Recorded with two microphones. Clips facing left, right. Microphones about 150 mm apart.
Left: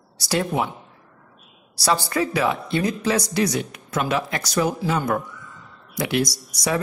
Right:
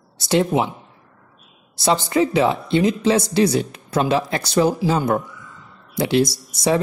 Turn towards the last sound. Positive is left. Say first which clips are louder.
# right 5 dB
turn(degrees=-25)  # may be behind; listen again after turning